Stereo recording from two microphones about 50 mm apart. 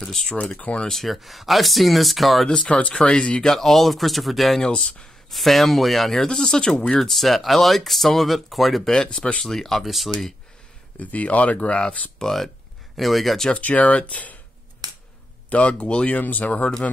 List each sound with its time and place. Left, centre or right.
0.0 s speech: centre
0.6 s speech: left
0.8 s speech: centre
2.4 s speech: centre
2.7 s speech: left
3.5 s speech: centre
4.6 s speech: left
5.3 s speech: centre
8.9 s speech: centre
11.0 s speech: left
12.2 s speech: centre
13.6 s speech: left
15.5 s speech: left